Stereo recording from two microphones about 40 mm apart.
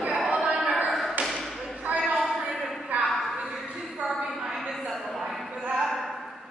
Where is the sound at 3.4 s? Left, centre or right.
Centre.